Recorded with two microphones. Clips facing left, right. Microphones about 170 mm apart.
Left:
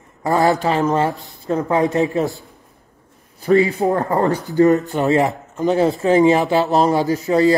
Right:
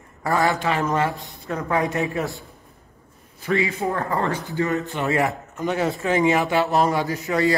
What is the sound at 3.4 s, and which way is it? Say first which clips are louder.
Speech: left 8 dB; 35° left (ahead or behind).